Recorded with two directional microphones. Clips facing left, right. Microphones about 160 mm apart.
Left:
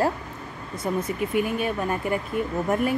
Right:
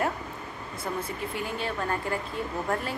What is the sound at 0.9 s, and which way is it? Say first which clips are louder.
Speech: left 7 dB; 20° left (ahead or behind).